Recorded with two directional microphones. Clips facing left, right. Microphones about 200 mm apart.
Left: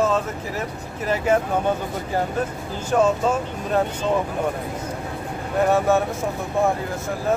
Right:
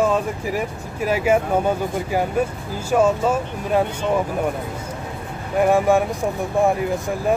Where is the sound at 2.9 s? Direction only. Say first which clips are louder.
Right 2 dB; 10° right (ahead or behind).